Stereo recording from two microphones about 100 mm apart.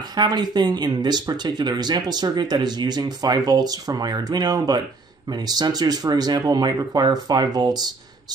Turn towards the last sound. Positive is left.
turn(degrees=-45)  # may be behind; listen again after turning